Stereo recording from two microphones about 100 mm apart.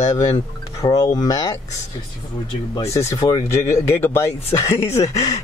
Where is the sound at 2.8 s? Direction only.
30° left (ahead or behind).